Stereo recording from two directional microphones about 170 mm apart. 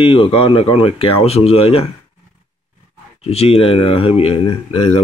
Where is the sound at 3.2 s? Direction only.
35° left (ahead or behind).